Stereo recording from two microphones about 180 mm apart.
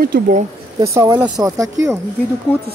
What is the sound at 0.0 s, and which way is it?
Speech, 55° right (ahead or behind).